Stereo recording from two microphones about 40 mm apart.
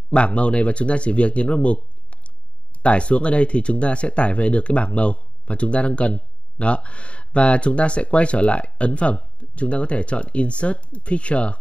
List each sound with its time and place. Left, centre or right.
0.1 s speech: left